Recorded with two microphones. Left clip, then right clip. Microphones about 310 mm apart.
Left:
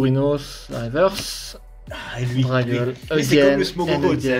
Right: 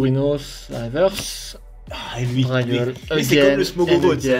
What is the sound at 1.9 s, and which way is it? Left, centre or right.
Speech, centre.